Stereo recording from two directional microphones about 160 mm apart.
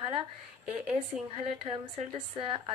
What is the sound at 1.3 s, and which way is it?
A woman's voice, 35° right (ahead or behind).